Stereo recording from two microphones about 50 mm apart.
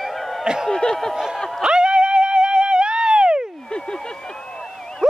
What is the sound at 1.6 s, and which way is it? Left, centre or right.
Music, centre.